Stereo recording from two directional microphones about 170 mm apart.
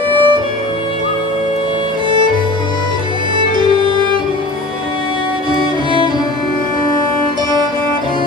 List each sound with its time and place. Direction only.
0.1 s music: 30° right (ahead or behind)